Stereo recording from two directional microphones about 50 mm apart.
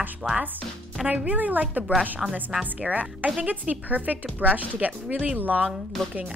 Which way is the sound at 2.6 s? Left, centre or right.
Right.